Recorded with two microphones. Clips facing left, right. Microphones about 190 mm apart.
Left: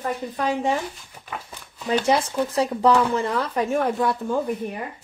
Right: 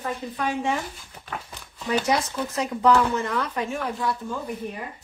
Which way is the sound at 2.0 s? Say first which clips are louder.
Left 4 dB; 30° left (ahead or behind).